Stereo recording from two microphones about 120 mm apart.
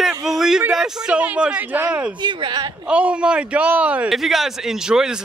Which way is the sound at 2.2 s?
35° right (ahead or behind).